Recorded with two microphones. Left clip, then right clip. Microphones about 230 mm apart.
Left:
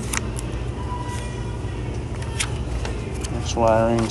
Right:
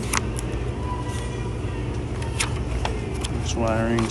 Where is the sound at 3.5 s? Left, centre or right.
Right.